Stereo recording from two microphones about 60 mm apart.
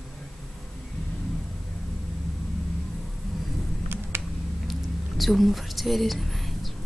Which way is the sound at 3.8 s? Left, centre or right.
Right.